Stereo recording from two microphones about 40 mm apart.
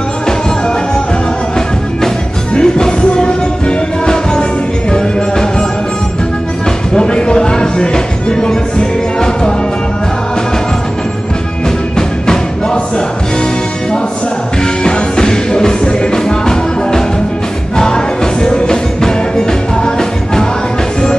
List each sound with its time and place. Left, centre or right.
2.5 s music: centre
7.0 s music: left
14.6 s music: centre